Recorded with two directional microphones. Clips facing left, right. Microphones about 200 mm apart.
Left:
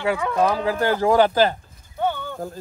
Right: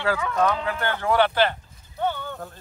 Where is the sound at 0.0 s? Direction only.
25° left (ahead or behind).